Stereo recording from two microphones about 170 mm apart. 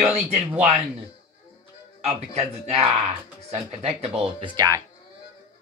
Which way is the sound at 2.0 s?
40° right (ahead or behind).